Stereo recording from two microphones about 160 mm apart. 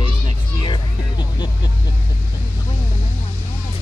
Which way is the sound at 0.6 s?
30° left (ahead or behind).